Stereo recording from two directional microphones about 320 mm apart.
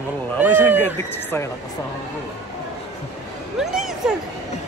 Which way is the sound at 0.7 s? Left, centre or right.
Centre.